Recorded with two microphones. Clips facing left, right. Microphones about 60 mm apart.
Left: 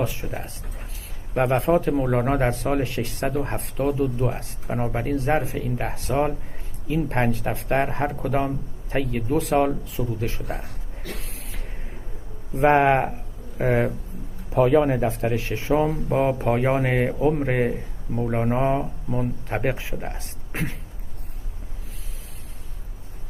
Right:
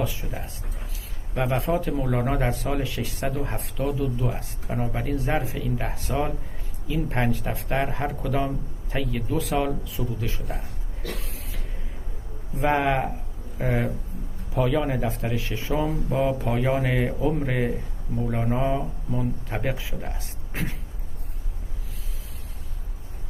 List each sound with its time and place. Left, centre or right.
0.0 s speech: left
1.8 s speech: left
4.7 s a man's voice: left
5.0 s speech: left
12.6 s speech: left
20.0 s speech: left